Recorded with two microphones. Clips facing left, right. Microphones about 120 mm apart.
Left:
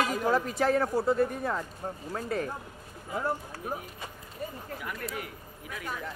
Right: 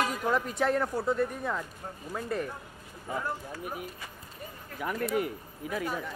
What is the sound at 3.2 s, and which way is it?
Speech, 30° left (ahead or behind).